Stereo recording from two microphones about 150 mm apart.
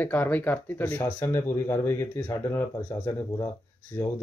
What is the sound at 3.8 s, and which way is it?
Speech, 10° left (ahead or behind).